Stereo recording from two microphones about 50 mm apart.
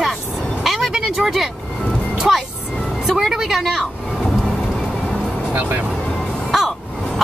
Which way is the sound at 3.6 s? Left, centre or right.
Centre.